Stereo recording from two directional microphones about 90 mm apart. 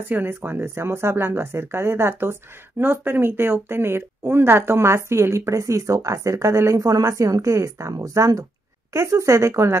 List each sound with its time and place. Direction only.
0.1 s a woman's voice: 20° right (ahead or behind)